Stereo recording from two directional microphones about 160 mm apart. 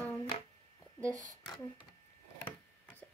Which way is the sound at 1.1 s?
50° right (ahead or behind).